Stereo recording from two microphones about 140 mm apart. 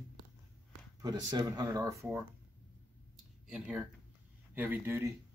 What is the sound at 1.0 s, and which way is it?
Speech, 30° right (ahead or behind).